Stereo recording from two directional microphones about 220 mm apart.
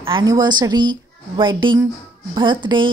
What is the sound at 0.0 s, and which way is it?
A woman's voice, 20° right (ahead or behind).